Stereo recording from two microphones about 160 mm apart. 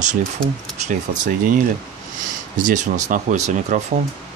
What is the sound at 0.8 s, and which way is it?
Speech, 55° right (ahead or behind).